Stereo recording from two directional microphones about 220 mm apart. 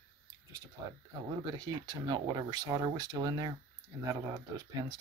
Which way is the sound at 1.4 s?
20° right (ahead or behind).